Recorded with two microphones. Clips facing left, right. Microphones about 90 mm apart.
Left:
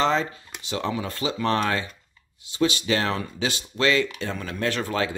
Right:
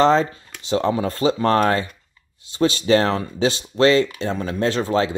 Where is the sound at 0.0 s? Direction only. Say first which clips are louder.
Right 7 dB; 40° right (ahead or behind).